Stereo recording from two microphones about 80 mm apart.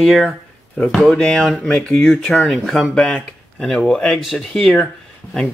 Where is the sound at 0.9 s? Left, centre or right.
Centre.